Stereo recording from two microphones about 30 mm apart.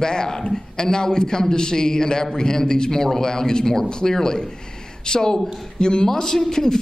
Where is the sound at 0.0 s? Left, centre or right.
Left.